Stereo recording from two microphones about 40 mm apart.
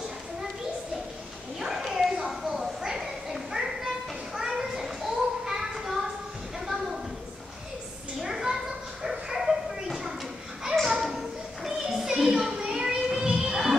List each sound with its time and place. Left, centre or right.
1.6 s a sound: centre
8.2 s a sound: centre
9.0 s dog: centre
10.9 s children playing: centre
11.6 s music: centre
12.5 s children playing: centre